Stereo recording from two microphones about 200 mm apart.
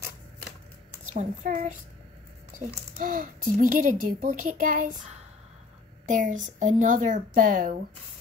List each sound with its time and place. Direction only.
1.0 s a woman's voice: 35° right (ahead or behind)
3.0 s a child's voice: 40° right (ahead or behind)
6.0 s a child's voice: 40° right (ahead or behind)